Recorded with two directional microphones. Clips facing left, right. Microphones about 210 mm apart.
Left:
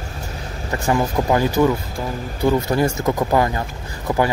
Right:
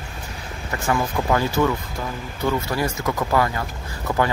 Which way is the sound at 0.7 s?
25° left (ahead or behind).